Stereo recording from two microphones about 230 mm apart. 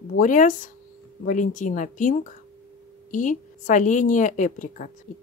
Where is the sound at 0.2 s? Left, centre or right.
Left.